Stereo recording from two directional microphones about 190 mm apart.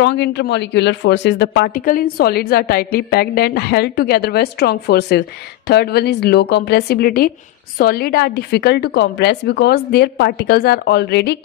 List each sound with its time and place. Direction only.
0.0 s speech: 65° left (ahead or behind)